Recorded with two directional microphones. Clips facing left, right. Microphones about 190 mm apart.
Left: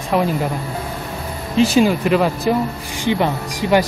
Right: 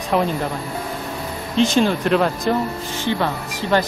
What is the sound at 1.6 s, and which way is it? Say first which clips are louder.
Speech: left 3 dB; 10° left (ahead or behind).